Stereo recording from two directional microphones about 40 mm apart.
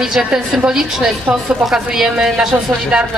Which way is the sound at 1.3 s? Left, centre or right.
Right.